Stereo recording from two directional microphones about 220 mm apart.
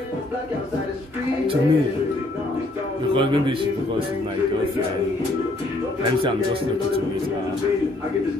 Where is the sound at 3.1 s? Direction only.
20° right (ahead or behind).